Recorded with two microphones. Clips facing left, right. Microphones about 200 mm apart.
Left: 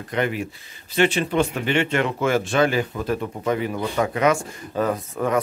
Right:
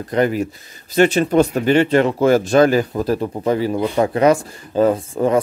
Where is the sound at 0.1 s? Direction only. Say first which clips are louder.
Right 7 dB; 40° right (ahead or behind).